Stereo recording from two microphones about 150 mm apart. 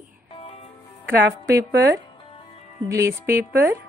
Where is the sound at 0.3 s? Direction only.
40° left (ahead or behind).